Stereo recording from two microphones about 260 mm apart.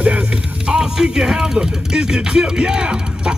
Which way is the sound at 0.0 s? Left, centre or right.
Centre.